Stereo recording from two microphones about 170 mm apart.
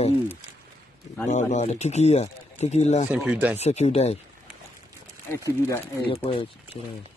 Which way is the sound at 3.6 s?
40° left (ahead or behind).